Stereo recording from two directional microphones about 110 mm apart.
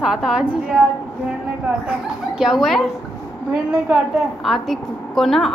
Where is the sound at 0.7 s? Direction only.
10° left (ahead or behind).